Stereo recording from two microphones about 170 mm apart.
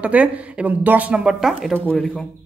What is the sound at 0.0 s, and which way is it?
Speech, 5° right (ahead or behind).